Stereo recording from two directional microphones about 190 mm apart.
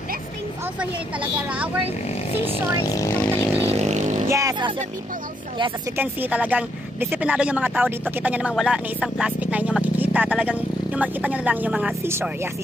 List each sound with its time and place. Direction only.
0.7 s speech: 5° right (ahead or behind)
2.3 s speech: 20° left (ahead or behind)
3.7 s vehicle: 35° right (ahead or behind)
4.3 s speech: 15° right (ahead or behind)
5.9 s speech: 10° right (ahead or behind)